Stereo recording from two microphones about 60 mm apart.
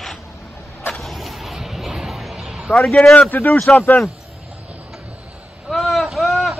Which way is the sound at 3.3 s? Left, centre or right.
Left.